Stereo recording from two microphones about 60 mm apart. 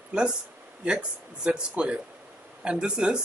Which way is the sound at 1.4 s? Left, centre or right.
Centre.